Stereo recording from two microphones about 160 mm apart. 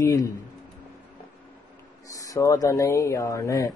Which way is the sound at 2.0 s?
20° left (ahead or behind).